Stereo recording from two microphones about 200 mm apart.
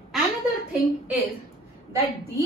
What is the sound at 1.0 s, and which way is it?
Speech, 10° right (ahead or behind).